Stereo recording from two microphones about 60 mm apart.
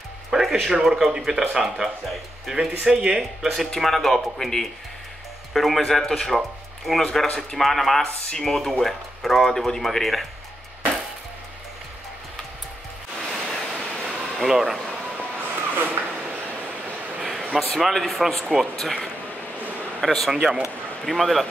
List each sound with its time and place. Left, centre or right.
0.3 s speech: centre
13.5 s waves: centre
13.7 s vehicle: centre
14.3 s speech: centre
15.1 s a sound: right
17.2 s a sound: centre
17.7 s speech: centre
18.8 s speech: centre
20.3 s speech: centre
21.0 s speech: centre